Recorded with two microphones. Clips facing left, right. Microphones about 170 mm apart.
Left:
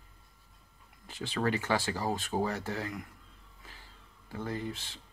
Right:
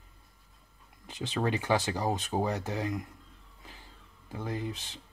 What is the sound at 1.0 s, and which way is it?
Speech, 20° right (ahead or behind).